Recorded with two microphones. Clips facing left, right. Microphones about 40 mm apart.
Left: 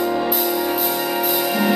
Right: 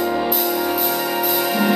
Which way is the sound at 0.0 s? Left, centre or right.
Centre.